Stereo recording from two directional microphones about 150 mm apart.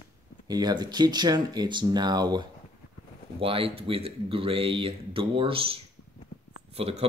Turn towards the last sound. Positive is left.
turn(degrees=-40)  # may be behind; listen again after turning